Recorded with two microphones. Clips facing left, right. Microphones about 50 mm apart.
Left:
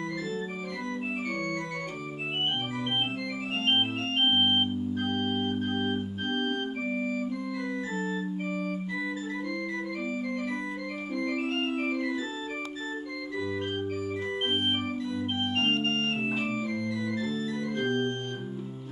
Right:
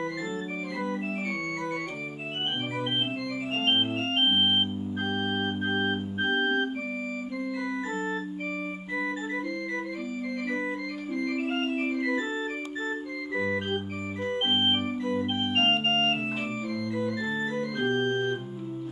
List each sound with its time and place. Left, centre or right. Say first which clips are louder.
3.6 s organ: right 1 dB; centre
7.7 s organ: right 1 dB; right
11.4 s organ: right 1 dB; centre
12.0 s organ: right 3 dB; right
14.5 s organ: right 4 dB; right